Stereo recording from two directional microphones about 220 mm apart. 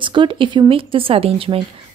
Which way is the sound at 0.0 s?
20° right (ahead or behind).